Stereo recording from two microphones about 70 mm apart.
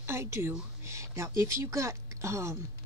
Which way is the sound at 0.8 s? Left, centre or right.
Right.